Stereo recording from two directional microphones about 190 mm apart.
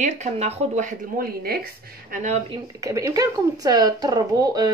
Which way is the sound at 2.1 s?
40° right (ahead or behind).